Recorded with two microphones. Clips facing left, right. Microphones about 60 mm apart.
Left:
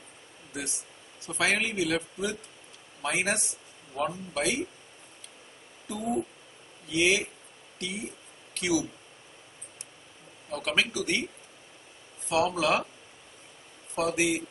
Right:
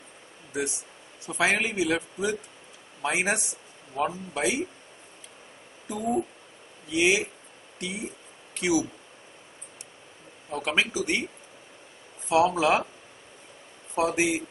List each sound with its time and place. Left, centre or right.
1.2 s a man's voice: centre
5.9 s a man's voice: centre
8.5 s speech: centre
10.5 s a man's voice: centre
12.3 s speech: right
13.9 s speech: right